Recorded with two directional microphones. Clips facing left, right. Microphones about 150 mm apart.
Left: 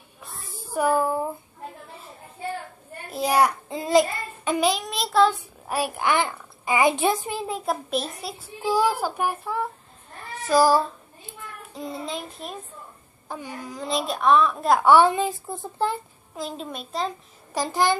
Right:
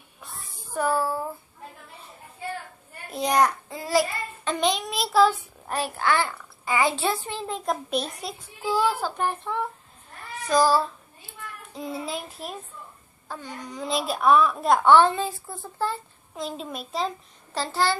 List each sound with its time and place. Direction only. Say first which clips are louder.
0.2 s a sound: left 2 dB; centre (ahead or behind)
0.7 s a woman's voice: left 3 dB; 15° left (ahead or behind)
3.1 s child singing: left 1 dB; 5° left (ahead or behind)
3.6 s child singing: left 4 dB; 20° left (ahead or behind)
4.6 s child singing: left 1 dB; 5° left (ahead or behind)
5.7 s a woman's voice: left 1 dB; 10° left (ahead or behind)
8.6 s a woman's voice: left 2 dB; 10° left (ahead or behind)
11.7 s child singing: even; centre (ahead or behind)
13.3 s a woman's voice: left 2 dB; 10° left (ahead or behind)
16.3 s child singing: even; centre (ahead or behind)
17.6 s a woman's voice: left 3 dB; 15° left (ahead or behind)